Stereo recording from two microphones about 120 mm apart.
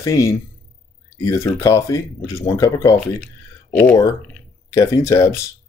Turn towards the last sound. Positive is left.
turn(degrees=25)  # may be behind; listen again after turning